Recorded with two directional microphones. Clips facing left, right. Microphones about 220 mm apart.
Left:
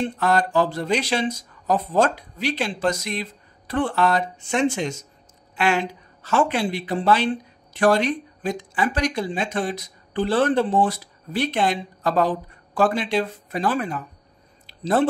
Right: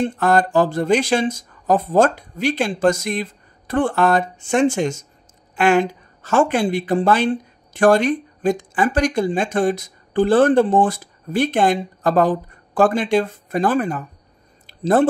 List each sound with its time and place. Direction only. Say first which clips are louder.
0.0 s a woman's voice: right 4 dB; 50° right (ahead or behind)